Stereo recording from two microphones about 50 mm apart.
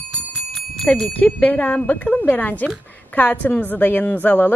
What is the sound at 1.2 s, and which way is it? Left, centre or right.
A woman's voice, left.